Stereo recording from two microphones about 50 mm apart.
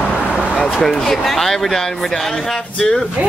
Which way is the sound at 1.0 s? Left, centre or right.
Centre.